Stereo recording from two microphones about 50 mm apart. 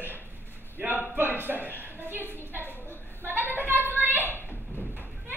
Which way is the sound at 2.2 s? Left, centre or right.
Left.